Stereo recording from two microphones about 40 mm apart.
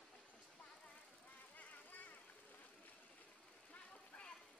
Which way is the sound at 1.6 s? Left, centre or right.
Left.